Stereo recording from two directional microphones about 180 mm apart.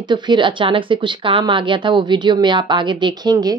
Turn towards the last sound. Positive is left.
turn(degrees=-20)  # may be behind; listen again after turning